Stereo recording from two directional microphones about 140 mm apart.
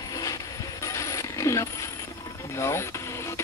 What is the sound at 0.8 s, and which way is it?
Mechanisms, 20° left (ahead or behind).